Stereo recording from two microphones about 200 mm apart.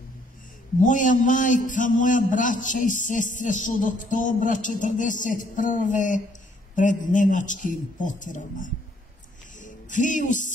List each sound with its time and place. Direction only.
0.8 s a man's voice: 40° left (ahead or behind)
9.6 s music: 40° left (ahead or behind)